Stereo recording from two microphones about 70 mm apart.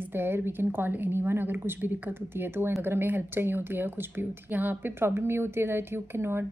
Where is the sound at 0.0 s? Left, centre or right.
Right.